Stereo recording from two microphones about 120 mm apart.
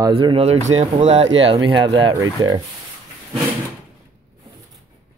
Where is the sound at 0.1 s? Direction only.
50° right (ahead or behind).